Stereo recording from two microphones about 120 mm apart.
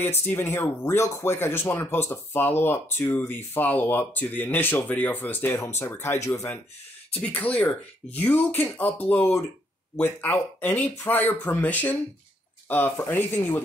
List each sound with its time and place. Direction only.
0.3 s speech: 20° left (ahead or behind)
7.2 s speech: 10° left (ahead or behind)